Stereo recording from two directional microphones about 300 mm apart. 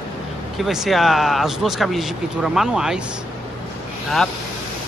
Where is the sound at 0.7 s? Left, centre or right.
Centre.